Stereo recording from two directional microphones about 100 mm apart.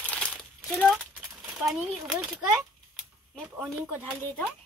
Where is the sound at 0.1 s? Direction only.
5° left (ahead or behind).